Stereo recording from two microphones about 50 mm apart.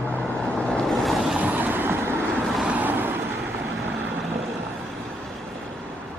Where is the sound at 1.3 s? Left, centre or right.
Right.